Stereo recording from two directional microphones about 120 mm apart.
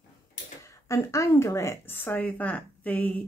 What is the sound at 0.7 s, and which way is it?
A woman's voice, 25° left (ahead or behind).